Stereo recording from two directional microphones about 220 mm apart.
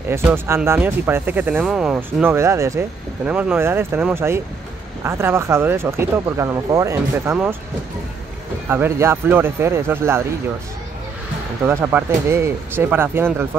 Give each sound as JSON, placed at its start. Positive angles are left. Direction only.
{"t": 0.1, "sound": "speech", "side_deg": -10}
{"t": 8.6, "sound": "speech", "side_deg": -10}
{"t": 11.6, "sound": "speech", "side_deg": -10}